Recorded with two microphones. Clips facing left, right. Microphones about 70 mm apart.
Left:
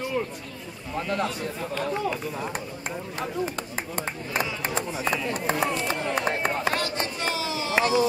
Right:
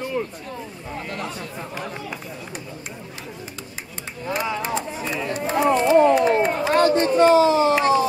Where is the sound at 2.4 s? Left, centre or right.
Left.